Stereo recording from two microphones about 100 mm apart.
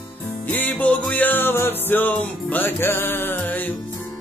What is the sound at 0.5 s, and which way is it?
Music, 15° left (ahead or behind).